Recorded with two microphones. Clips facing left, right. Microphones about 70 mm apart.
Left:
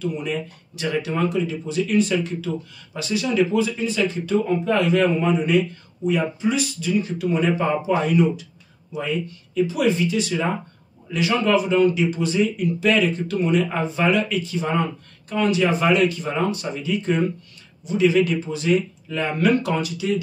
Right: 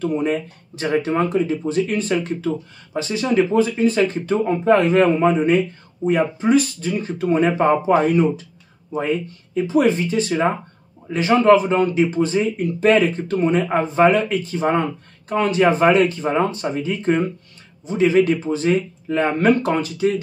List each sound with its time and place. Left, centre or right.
0.0 s speech: right